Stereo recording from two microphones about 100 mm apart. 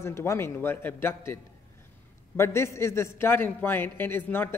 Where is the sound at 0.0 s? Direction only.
25° left (ahead or behind).